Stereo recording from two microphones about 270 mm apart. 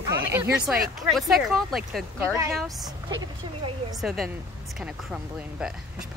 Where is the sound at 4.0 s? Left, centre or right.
Centre.